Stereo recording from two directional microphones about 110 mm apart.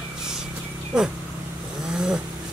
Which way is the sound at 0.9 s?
5° right (ahead or behind).